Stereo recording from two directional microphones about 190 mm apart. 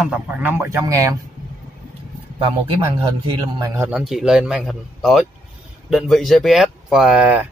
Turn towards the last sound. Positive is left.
turn(degrees=-5)  # may be behind; listen again after turning